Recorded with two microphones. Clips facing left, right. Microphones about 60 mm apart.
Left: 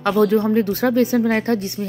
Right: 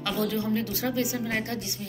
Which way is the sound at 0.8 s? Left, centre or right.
Left.